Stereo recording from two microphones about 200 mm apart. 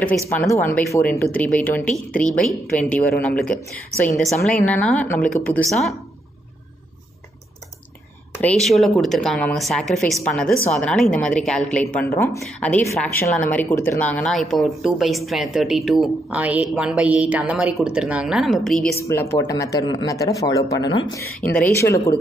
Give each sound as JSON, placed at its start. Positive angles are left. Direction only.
{"t": 0.4, "sound": "a woman's voice", "side_deg": 10}
{"t": 8.4, "sound": "a woman's voice", "side_deg": 5}
{"t": 19.0, "sound": "speech", "side_deg": 15}
{"t": 21.5, "sound": "speech", "side_deg": 10}